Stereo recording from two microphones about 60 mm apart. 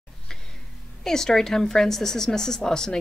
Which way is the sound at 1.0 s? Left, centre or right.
Centre.